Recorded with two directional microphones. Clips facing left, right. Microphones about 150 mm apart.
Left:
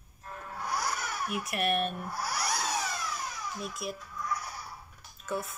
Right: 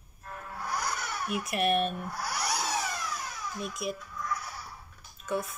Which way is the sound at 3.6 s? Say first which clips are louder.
Right 4 dB; centre (ahead or behind).